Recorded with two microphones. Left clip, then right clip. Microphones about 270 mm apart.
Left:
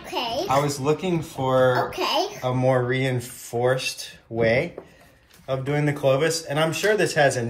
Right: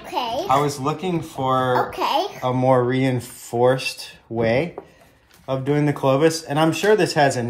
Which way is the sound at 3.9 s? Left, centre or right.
Centre.